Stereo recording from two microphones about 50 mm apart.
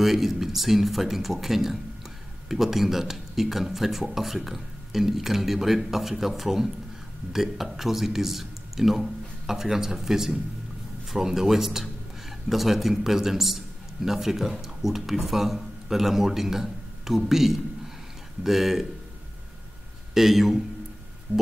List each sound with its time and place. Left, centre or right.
0.0 s speech: centre
20.2 s speech: centre
21.3 s music: right